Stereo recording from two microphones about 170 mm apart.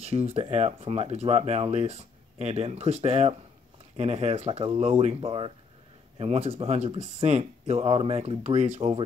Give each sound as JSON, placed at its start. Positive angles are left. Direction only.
{"t": 0.0, "sound": "speech", "side_deg": -35}